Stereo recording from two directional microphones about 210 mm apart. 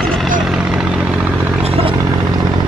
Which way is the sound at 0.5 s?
5° right (ahead or behind).